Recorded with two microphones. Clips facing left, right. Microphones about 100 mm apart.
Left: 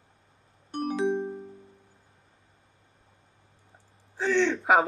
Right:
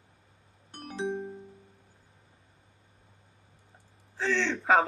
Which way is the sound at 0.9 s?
90° left.